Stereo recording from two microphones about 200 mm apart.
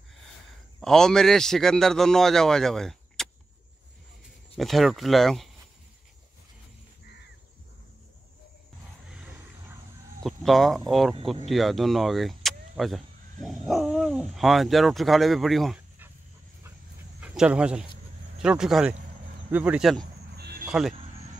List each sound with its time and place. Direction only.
0.7 s a man's voice: centre (ahead or behind)
4.6 s a man's voice: centre (ahead or behind)
10.2 s a man's voice: centre (ahead or behind)
17.2 s a man's voice: 5° right (ahead or behind)
20.3 s a sound: 50° right (ahead or behind)
20.6 s a sound: 5° right (ahead or behind)